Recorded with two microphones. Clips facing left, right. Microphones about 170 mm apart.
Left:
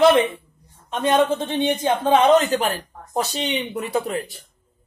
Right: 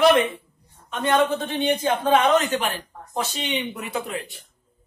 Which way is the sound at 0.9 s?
20° left (ahead or behind).